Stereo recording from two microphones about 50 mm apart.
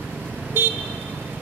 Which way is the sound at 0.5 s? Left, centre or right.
Right.